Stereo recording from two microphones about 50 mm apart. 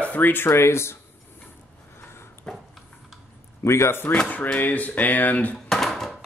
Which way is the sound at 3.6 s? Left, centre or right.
Left.